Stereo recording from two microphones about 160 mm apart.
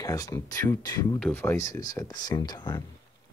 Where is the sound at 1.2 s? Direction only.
15° left (ahead or behind).